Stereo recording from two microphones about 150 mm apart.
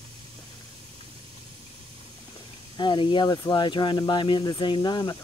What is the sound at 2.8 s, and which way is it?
Speech, 30° left (ahead or behind).